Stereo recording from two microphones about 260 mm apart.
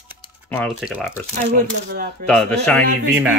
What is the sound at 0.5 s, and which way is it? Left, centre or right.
Speech, centre.